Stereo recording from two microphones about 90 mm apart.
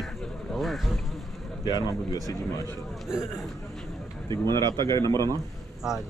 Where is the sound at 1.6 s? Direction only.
50° left (ahead or behind).